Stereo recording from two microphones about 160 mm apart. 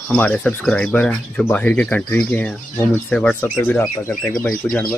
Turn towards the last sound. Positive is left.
turn(degrees=10)  # may be behind; listen again after turning